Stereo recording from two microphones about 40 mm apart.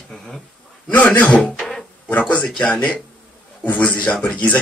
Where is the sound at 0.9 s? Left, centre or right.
Left.